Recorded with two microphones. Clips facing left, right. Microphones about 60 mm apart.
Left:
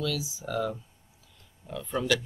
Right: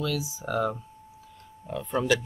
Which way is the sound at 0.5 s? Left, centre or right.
Right.